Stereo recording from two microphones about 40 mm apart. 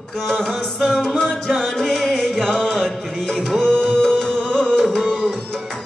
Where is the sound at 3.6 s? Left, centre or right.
Centre.